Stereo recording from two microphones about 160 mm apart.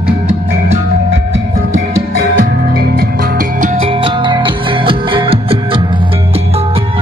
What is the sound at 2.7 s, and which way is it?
Music, 75° right (ahead or behind).